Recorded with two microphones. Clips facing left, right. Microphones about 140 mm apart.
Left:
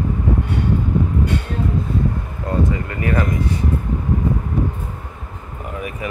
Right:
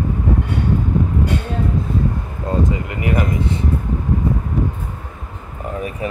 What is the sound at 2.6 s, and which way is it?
Speech, 20° right (ahead or behind).